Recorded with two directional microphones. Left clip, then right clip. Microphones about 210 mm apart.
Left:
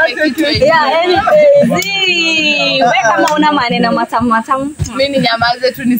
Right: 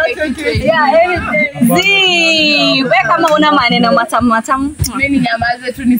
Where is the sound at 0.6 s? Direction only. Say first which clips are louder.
Right 1 dB; 45° left (ahead or behind).